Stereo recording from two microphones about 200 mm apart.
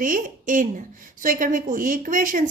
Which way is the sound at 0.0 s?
40° right (ahead or behind).